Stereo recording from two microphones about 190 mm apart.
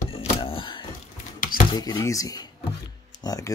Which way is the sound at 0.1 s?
30° left (ahead or behind).